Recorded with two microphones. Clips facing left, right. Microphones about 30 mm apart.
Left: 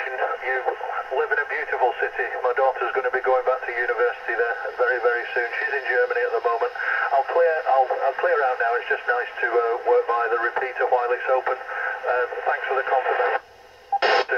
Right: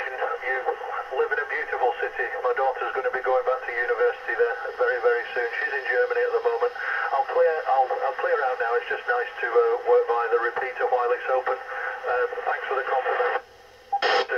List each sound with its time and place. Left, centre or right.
0.2 s radio: centre
2.1 s speech: centre
3.0 s radio: centre
13.9 s radio: centre